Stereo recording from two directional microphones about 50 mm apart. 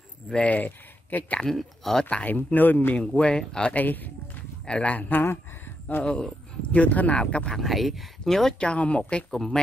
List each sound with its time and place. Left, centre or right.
0.3 s speech: left
1.4 s speech: centre
2.2 s speech: left
3.0 s speech: centre
3.7 s speech: left
4.6 s speech: centre
4.9 s speech: left
6.7 s speech: left
7.5 s speech: centre
8.5 s speech: left
9.3 s speech: centre